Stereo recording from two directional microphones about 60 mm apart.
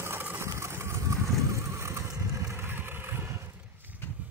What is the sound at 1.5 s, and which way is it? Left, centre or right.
Vehicle, right.